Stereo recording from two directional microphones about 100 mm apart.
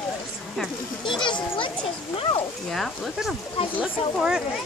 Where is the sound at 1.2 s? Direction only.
55° left (ahead or behind).